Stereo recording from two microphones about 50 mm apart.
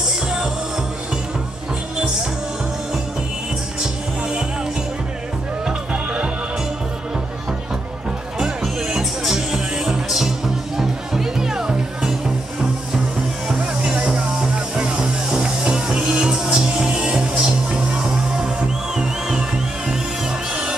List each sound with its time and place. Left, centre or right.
3.8 s music: centre
5.7 s music: right
8.4 s music: centre
13.5 s music: centre